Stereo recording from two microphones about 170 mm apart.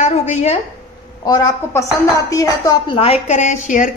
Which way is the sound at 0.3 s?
40° left (ahead or behind).